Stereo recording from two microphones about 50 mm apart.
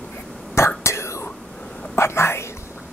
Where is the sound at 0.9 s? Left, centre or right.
Left.